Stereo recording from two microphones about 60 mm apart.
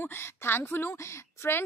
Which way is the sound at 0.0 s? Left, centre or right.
Left.